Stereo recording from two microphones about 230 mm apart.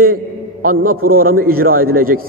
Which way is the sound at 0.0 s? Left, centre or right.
Right.